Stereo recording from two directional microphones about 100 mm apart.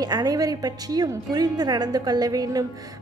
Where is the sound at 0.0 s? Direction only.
40° right (ahead or behind).